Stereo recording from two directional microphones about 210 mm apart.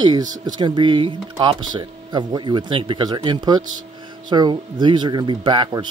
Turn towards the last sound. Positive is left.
turn(degrees=-20)  # may be behind; listen again after turning